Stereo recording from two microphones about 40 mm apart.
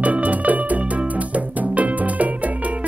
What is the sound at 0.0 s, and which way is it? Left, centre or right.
Music, right.